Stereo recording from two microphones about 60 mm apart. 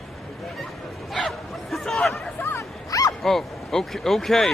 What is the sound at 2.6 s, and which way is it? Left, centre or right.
Bow-wow, left.